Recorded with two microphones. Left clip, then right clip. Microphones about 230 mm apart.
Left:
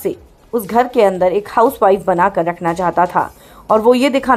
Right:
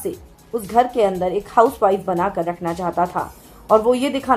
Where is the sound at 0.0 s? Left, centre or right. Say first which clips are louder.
Left 6 dB; left.